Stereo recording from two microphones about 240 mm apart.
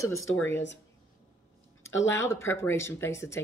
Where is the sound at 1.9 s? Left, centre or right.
Left.